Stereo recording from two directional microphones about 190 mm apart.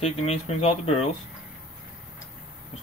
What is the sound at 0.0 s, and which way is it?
Speech, 35° left (ahead or behind).